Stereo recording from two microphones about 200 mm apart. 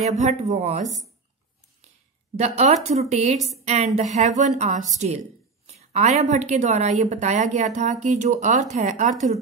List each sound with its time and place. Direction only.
0.1 s a woman's voice: 35° right (ahead or behind)
2.3 s a woman's voice: 35° right (ahead or behind)